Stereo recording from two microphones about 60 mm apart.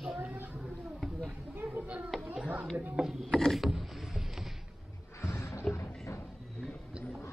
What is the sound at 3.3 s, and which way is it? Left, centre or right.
Mechanisms, centre.